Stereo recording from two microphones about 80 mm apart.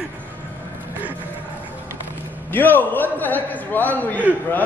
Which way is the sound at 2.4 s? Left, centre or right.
Left.